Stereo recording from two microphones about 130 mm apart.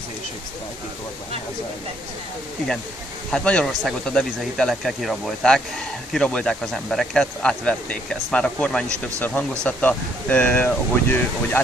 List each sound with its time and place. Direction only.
3.3 s speech: 5° left (ahead or behind)